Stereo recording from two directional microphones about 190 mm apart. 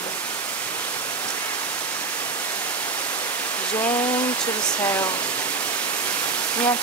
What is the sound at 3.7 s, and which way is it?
Speech, 10° left (ahead or behind).